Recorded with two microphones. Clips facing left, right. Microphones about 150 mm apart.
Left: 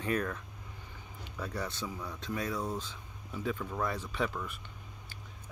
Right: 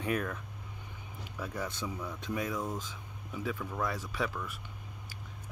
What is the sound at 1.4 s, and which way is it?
Speech, 10° right (ahead or behind).